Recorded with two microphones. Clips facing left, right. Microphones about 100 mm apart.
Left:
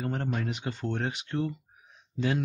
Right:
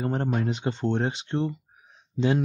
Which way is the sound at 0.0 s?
30° right (ahead or behind).